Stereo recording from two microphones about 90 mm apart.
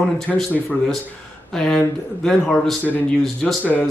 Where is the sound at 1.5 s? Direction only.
5° left (ahead or behind).